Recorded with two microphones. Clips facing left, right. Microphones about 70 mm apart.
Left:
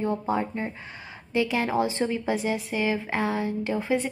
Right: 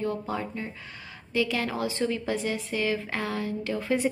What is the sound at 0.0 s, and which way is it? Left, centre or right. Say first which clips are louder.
A woman's voice: left 4 dB; left.